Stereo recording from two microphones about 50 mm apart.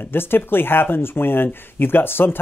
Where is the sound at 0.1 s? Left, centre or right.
Left.